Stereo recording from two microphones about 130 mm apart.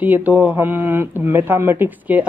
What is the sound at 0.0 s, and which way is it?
Speech, 10° right (ahead or behind).